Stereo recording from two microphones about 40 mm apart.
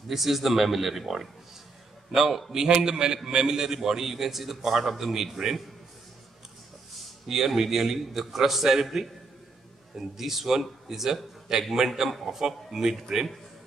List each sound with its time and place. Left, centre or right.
0.1 s a man's voice: centre
2.5 s a man's voice: centre
7.2 s a man's voice: centre